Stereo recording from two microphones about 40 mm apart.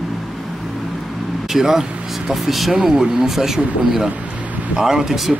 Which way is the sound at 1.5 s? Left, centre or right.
Centre.